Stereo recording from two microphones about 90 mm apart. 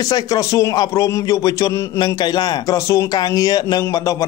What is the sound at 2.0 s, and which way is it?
A man's voice, 50° left (ahead or behind).